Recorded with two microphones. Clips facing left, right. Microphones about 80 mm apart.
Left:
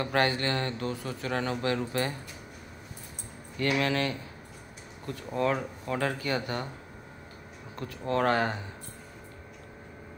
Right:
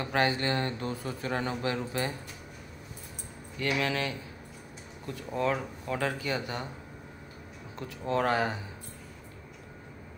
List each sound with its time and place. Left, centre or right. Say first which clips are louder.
0.0 s a man's voice: left 1 dB; centre
3.7 s speech: left 2 dB; centre
7.7 s speech: left 1 dB; centre